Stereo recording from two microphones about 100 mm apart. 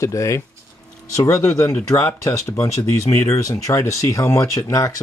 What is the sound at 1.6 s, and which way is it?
Speech, 25° left (ahead or behind).